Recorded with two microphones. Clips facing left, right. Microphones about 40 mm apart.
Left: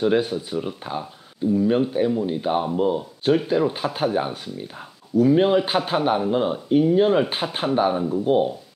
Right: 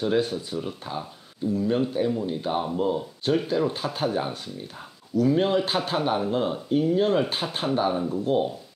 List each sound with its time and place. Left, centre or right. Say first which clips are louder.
0.0 s speech: left 4 dB; centre